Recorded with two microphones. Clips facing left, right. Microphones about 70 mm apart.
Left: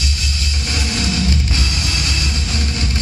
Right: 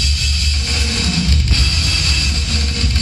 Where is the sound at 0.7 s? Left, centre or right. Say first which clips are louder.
Even; left.